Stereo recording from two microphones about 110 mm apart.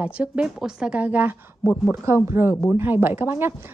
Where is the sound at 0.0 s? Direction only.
10° right (ahead or behind).